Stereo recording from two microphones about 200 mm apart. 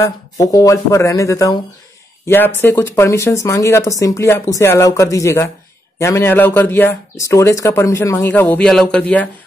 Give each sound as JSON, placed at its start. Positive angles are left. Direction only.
{"t": 0.0, "sound": "a man's voice", "side_deg": 15}